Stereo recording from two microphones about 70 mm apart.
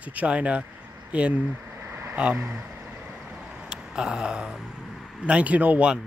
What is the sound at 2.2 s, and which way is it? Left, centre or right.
Speech, centre.